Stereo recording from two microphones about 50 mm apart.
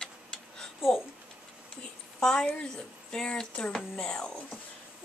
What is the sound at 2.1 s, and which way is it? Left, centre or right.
A woman's voice, centre.